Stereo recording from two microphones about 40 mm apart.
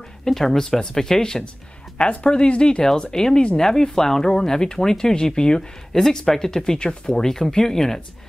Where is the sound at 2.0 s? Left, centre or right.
Left.